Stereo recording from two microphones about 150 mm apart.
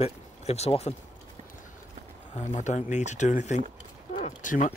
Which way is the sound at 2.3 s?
55° left (ahead or behind).